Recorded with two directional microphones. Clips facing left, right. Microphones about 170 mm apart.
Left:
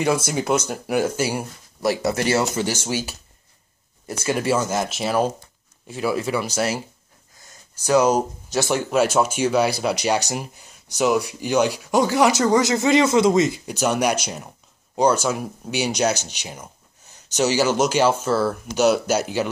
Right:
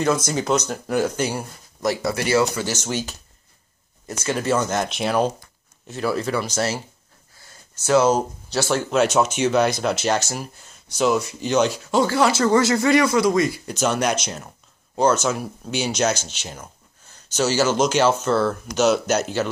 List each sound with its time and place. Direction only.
0.0 s speech: 10° left (ahead or behind)
2.0 s speech: 25° left (ahead or behind)
2.7 s speech: 10° left (ahead or behind)
7.3 s a sound: 15° left (ahead or behind)
8.5 s speech: 15° left (ahead or behind)